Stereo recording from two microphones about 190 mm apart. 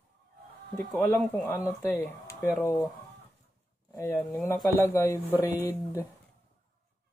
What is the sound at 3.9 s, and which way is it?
Speech, 15° left (ahead or behind).